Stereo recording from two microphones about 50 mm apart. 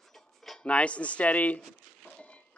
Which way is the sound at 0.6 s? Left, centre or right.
Left.